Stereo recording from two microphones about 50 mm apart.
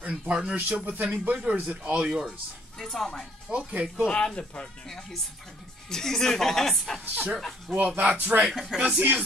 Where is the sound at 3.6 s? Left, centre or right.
Right.